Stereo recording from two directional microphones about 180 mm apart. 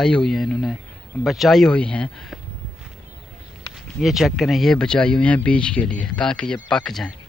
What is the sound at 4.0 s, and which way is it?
Speech, centre (ahead or behind).